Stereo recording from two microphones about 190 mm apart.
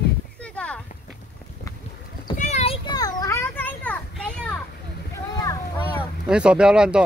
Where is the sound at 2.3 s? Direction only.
35° left (ahead or behind); by 4.6 s 5° left (ahead or behind).